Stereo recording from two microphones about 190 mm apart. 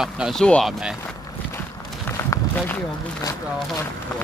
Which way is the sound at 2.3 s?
15° left (ahead or behind).